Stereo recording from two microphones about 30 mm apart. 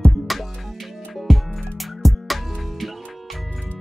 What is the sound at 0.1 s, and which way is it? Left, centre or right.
Music, centre.